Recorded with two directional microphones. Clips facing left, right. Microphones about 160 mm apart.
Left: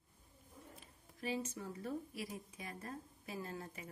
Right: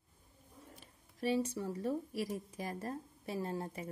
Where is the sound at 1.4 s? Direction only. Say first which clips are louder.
Right 8 dB; 35° right (ahead or behind).